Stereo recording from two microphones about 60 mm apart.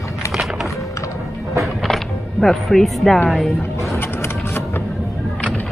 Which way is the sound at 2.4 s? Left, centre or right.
Centre.